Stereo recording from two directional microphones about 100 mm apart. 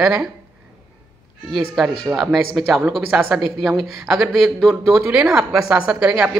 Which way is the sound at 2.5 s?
20° right (ahead or behind).